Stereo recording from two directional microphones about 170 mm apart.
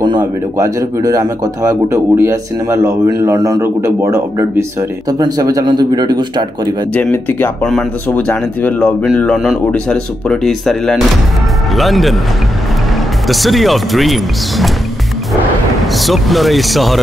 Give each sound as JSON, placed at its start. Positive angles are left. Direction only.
{"t": 0.6, "sound": "speech", "side_deg": -20}
{"t": 6.9, "sound": "speech", "side_deg": 10}
{"t": 13.3, "sound": "speech", "side_deg": 0}
{"t": 15.9, "sound": "speech", "side_deg": 0}